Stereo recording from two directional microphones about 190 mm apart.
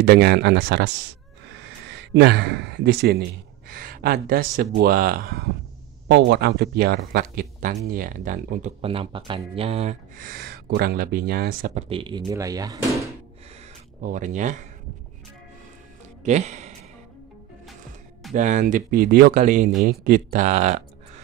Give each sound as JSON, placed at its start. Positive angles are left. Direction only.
{"t": 0.0, "sound": "speech", "side_deg": -55}
{"t": 6.0, "sound": "speech", "side_deg": -65}
{"t": 8.8, "sound": "speech", "side_deg": -30}
{"t": 10.1, "sound": "speech", "side_deg": -50}
{"t": 11.7, "sound": "speech", "side_deg": -30}
{"t": 12.3, "sound": "speech", "side_deg": -20}
{"t": 14.0, "sound": "speech", "side_deg": -40}
{"t": 16.3, "sound": "a man's voice", "side_deg": -35}
{"t": 18.3, "sound": "speech", "side_deg": -40}